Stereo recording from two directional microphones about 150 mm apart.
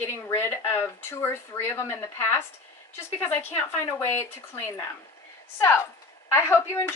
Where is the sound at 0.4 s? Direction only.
15° left (ahead or behind).